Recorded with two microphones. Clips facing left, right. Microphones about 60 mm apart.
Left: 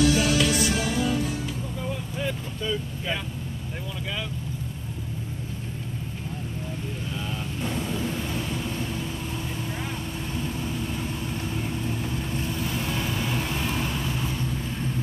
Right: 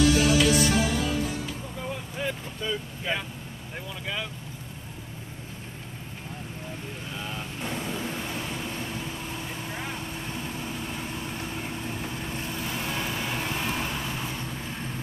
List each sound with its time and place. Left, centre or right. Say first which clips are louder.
0.1 s music: right 1 dB; centre
1.8 s vehicle: even; right
7.2 s vehicle: left 2 dB; right